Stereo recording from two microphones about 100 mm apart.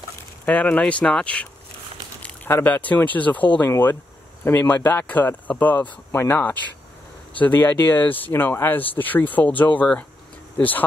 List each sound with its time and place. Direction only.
0.5 s speech: 15° left (ahead or behind)
3.6 s speech: 25° left (ahead or behind)